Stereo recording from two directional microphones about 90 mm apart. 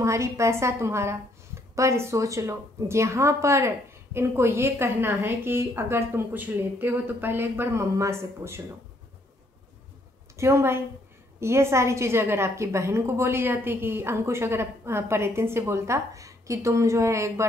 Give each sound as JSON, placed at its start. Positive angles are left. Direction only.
{"t": 0.0, "sound": "a woman's voice", "side_deg": -35}
{"t": 10.3, "sound": "a woman's voice", "side_deg": -30}